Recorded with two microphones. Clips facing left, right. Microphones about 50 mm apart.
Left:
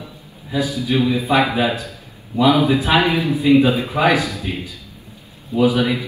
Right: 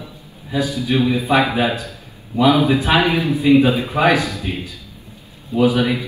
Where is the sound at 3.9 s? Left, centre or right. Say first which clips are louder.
Right 1 dB; right.